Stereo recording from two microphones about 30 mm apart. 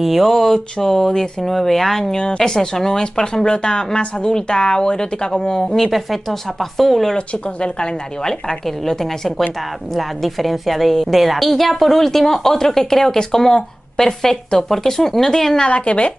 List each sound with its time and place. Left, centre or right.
0.0 s a woman's voice: centre
0.4 s speech: centre
2.1 s a woman's voice: left; by 7.2 s centre
7.2 s speech: left
8.2 s a woman's voice: left
9.9 s a woman's voice: centre
15.7 s speech: left